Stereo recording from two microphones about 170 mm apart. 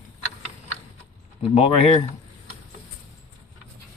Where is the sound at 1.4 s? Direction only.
35° left (ahead or behind).